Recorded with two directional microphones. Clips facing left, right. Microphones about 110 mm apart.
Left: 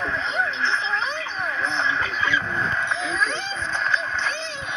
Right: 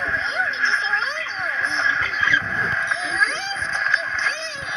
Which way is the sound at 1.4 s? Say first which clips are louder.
Right 1 dB; 35° left (ahead or behind).